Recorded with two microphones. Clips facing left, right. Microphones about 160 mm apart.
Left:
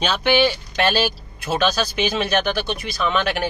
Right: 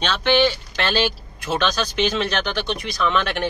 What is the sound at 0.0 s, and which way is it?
Speech, 10° left (ahead or behind).